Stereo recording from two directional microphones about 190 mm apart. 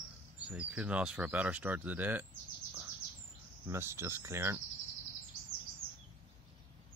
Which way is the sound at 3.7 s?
15° right (ahead or behind).